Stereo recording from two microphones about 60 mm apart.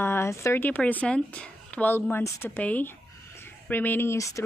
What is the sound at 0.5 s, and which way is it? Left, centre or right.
Speech, left.